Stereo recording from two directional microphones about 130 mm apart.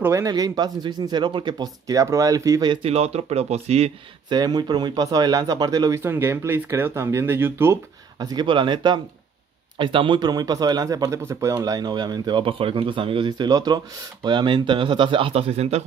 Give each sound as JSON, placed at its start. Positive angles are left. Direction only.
{"t": 0.0, "sound": "speech", "side_deg": -25}
{"t": 2.8, "sound": "speech", "side_deg": -50}
{"t": 4.3, "sound": "speech", "side_deg": -30}
{"t": 8.2, "sound": "speech", "side_deg": -30}